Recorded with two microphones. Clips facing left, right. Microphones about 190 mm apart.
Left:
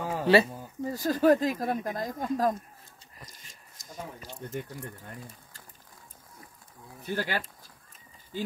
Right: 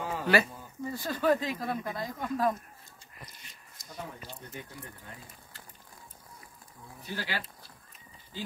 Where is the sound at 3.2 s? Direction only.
45° left (ahead or behind).